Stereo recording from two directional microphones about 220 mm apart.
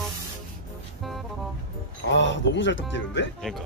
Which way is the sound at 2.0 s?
55° left (ahead or behind).